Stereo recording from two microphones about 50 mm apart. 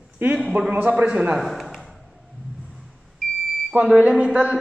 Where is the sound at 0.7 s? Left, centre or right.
Right.